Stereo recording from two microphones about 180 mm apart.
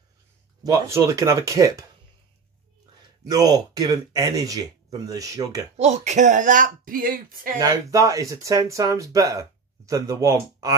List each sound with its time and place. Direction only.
0.7 s speech: 15° right (ahead or behind)
3.3 s speech: 20° right (ahead or behind)
5.8 s speech: 40° right (ahead or behind)
7.6 s speech: 20° right (ahead or behind)